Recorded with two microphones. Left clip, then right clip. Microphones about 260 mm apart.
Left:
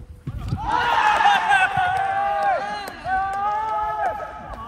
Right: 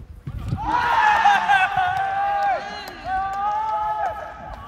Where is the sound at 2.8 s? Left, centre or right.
Centre.